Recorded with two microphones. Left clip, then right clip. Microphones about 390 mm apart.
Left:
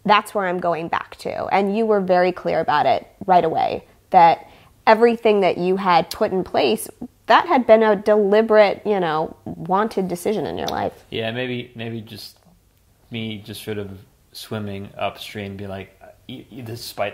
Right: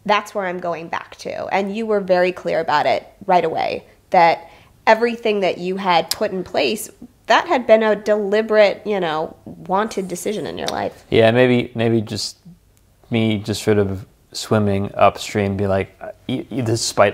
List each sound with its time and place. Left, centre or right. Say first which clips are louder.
0.0 s a woman's voice: left 2 dB; left
11.1 s speech: right 12 dB; right